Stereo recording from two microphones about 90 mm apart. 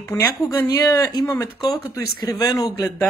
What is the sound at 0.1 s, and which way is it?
Speech, 35° left (ahead or behind).